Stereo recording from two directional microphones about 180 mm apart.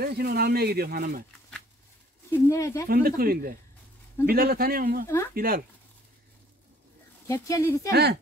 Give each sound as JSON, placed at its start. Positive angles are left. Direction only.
{"t": 0.0, "sound": "speech", "side_deg": -60}
{"t": 2.3, "sound": "speech", "side_deg": 15}
{"t": 2.9, "sound": "speech", "side_deg": -55}
{"t": 5.0, "sound": "speech", "side_deg": 15}
{"t": 5.3, "sound": "speech", "side_deg": -55}
{"t": 7.2, "sound": "speech", "side_deg": 20}
{"t": 7.9, "sound": "speech", "side_deg": -65}